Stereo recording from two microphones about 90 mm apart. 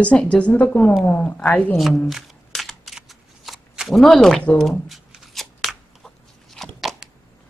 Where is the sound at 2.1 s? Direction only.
Centre (ahead or behind).